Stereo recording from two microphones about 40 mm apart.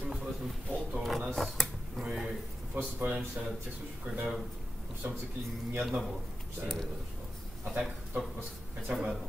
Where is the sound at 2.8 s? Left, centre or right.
Right.